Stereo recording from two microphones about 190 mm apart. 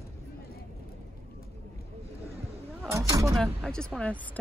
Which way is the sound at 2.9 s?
15° right (ahead or behind).